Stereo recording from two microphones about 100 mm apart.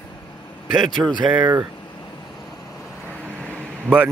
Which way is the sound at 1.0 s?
20° right (ahead or behind).